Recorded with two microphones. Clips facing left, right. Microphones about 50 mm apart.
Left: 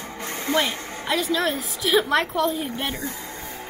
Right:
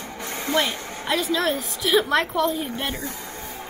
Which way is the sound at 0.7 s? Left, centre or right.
Left.